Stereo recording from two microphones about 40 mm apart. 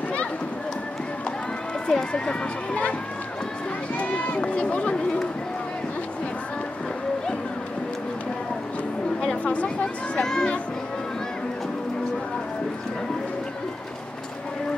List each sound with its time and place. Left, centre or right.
1.9 s speech: left
4.0 s run: left
9.4 s speech: left
10.2 s speech: centre